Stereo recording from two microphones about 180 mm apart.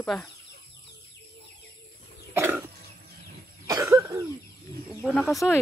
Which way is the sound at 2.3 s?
10° right (ahead or behind).